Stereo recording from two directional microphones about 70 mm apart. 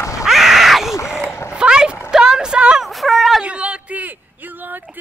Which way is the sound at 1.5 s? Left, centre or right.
Centre.